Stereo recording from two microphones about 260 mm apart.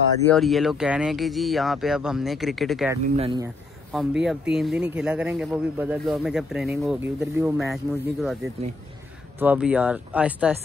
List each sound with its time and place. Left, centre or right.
0.3 s speech: centre
3.2 s speech: centre
3.9 s speech: centre
9.4 s speech: centre